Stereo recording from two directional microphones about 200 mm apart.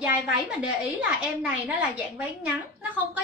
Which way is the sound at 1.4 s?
5° right (ahead or behind).